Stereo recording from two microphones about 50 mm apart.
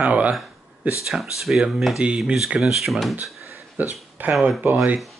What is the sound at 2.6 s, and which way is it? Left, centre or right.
Speech, centre.